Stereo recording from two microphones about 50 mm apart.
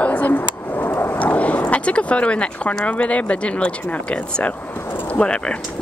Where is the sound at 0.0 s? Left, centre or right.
Left.